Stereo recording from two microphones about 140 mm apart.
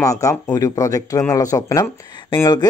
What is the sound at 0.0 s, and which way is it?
Speech, 25° left (ahead or behind).